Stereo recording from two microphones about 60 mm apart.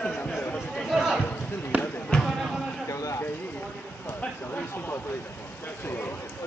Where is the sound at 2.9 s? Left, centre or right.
Left.